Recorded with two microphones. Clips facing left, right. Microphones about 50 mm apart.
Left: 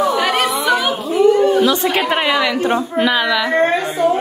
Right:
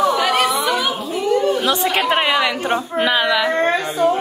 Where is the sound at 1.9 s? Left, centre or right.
Centre.